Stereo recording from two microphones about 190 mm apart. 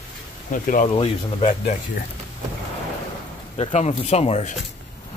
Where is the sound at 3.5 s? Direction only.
35° left (ahead or behind).